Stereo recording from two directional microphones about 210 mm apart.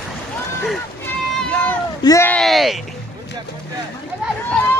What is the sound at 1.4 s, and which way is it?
Run, 5° left (ahead or behind).